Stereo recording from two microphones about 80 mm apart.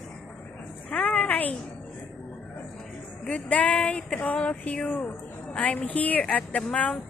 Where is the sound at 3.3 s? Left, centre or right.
Centre.